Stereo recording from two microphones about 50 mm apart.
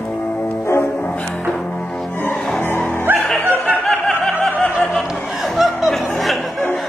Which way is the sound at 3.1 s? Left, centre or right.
Right.